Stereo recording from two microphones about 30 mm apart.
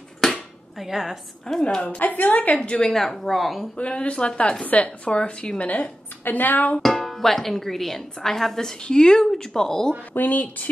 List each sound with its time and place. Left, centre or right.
0.7 s a woman's voice: centre
1.5 s speech: centre
2.0 s a woman's voice: left
2.9 s speech: centre
3.7 s speech: left
4.6 s a woman's voice: left
5.1 s speech: left
6.2 s a woman's voice: left
6.8 s speech: centre
8.8 s speech: left
10.1 s speech: left